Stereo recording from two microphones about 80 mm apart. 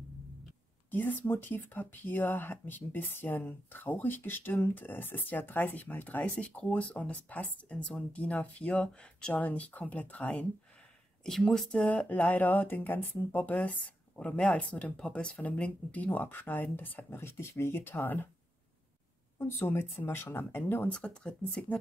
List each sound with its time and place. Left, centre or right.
0.8 s speech: left
11.5 s speech: centre
19.3 s speech: left
20.9 s speech: centre